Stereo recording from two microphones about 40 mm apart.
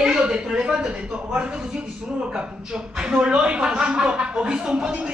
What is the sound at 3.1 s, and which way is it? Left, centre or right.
Speech, right.